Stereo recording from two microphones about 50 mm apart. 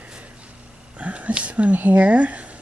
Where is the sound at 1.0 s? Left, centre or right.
Right.